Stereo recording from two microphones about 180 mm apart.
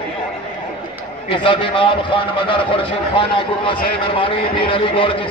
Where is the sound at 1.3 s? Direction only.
30° left (ahead or behind).